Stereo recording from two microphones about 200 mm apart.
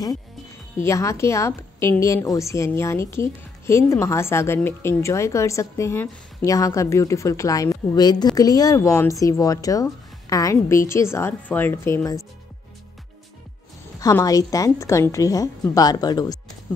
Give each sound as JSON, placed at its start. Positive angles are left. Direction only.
{"t": 0.7, "sound": "a woman's voice", "side_deg": 15}
{"t": 13.9, "sound": "a woman's voice", "side_deg": 15}